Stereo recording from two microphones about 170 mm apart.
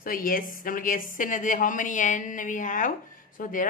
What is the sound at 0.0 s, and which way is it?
A woman's voice, 55° left (ahead or behind).